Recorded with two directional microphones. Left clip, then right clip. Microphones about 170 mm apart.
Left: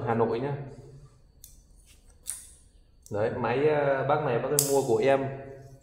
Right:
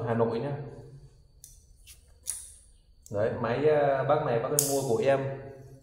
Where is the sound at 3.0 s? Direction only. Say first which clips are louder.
Left 1 dB; 40° left (ahead or behind).